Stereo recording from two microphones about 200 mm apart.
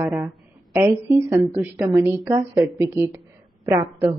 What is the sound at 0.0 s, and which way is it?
A woman's voice, 10° right (ahead or behind).